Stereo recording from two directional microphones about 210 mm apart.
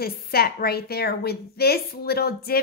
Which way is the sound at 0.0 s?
45° left (ahead or behind).